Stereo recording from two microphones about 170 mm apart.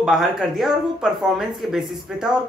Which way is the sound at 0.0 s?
Centre (ahead or behind).